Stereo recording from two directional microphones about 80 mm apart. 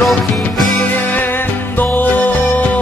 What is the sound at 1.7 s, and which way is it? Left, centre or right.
Music, left.